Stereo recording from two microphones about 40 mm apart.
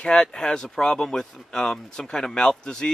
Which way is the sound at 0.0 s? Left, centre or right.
Centre.